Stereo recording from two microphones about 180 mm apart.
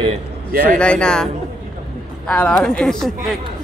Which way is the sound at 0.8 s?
5° left (ahead or behind).